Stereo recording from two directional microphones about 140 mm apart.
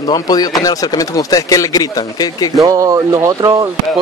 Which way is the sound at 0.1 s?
25° left (ahead or behind).